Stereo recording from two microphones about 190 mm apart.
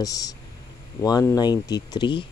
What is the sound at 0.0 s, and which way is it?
Speech, 20° left (ahead or behind).